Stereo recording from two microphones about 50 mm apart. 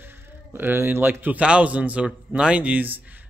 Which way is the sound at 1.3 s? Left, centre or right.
Right.